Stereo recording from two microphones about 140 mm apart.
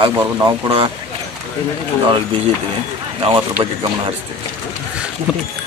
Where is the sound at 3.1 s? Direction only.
40° right (ahead or behind).